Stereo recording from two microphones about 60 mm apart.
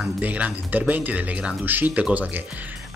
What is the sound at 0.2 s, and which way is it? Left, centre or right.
Speech, right.